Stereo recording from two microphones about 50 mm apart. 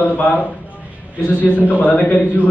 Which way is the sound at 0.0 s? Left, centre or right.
Left.